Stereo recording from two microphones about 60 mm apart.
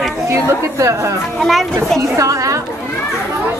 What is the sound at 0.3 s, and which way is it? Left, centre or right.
Speech, right.